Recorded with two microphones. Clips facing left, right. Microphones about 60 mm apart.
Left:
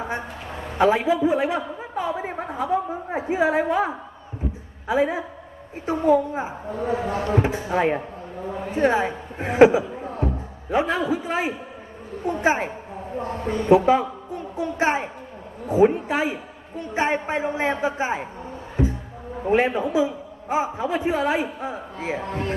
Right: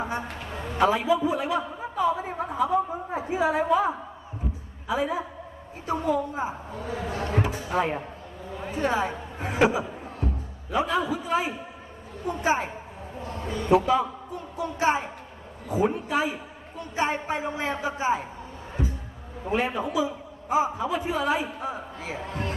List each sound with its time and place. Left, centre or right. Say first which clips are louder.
0.7 s a man's voice: left 3 dB; left
13.2 s a man's voice: left 6 dB; left
13.7 s a woman's voice: left 4 dB; left
19.5 s a woman's voice: left 6 dB; left
22.2 s a man's voice: left 4 dB; left